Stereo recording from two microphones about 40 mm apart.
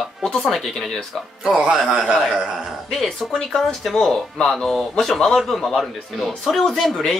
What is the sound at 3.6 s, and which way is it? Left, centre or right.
Speech, centre.